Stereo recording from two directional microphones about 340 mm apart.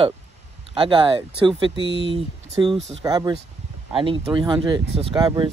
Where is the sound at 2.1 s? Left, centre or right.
Centre.